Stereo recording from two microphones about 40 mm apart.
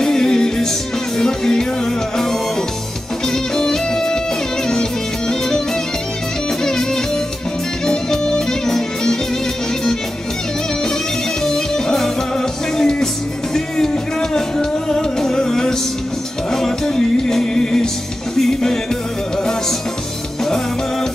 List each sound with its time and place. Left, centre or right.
0.0 s music: centre
3.3 s music: centre
7.8 s music: centre
11.4 s music: centre
14.3 s music: centre